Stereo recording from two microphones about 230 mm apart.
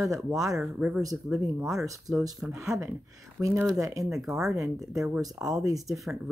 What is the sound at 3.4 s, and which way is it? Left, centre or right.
Speech, centre.